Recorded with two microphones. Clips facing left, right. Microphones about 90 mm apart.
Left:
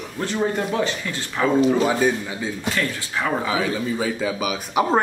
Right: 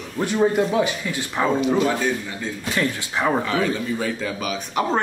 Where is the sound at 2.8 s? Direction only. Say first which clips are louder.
Right 5 dB; 20° right (ahead or behind).